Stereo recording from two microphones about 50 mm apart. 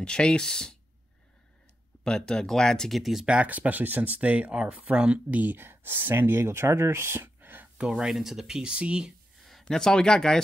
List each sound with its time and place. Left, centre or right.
0.0 s speech: centre
2.0 s speech: centre
3.0 s speech: centre
3.3 s speech: right
5.6 s speech: right
7.7 s speech: centre
8.1 s speech: centre
9.4 s speech: centre